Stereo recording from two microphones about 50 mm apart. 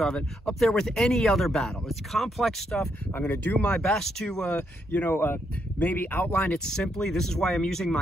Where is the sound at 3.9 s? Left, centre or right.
Centre.